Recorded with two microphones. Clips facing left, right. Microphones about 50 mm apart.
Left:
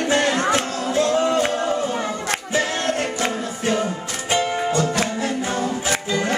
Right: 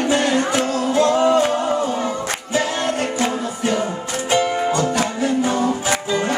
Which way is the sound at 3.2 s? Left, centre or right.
Left.